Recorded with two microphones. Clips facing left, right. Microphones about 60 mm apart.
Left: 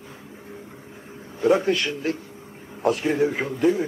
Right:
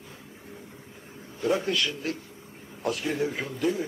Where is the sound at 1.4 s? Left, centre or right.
Left.